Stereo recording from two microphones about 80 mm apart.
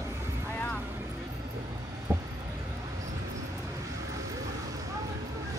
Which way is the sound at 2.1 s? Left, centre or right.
Right.